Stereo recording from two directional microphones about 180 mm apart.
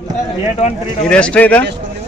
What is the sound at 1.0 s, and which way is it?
Speech, 5° left (ahead or behind).